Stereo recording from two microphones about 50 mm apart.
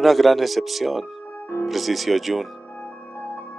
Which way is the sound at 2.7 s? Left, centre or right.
Left.